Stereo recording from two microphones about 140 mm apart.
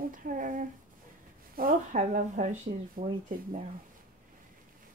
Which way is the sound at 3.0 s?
75° right (ahead or behind).